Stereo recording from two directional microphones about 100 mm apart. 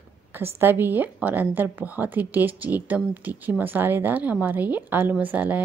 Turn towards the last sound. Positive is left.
turn(degrees=-15)  # may be behind; listen again after turning